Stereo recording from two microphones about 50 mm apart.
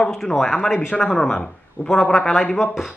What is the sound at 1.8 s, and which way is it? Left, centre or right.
Speech, left.